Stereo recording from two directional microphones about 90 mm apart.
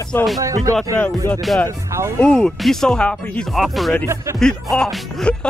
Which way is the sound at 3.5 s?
Centre (ahead or behind).